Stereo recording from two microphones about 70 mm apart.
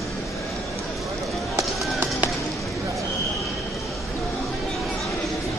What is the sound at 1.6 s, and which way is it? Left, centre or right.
Run, right.